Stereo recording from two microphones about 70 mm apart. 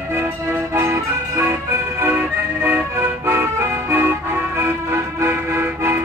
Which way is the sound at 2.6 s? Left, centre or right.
Right.